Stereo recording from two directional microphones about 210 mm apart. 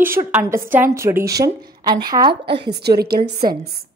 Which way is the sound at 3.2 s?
30° right (ahead or behind).